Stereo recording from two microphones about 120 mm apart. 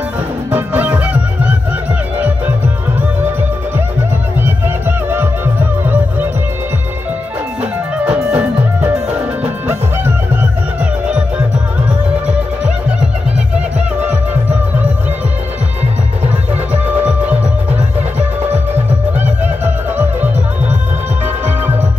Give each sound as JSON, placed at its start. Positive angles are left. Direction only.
{"t": 0.5, "sound": "music", "side_deg": -10}
{"t": 4.4, "sound": "music", "side_deg": -20}
{"t": 8.0, "sound": "music", "side_deg": -10}
{"t": 19.1, "sound": "music", "side_deg": -15}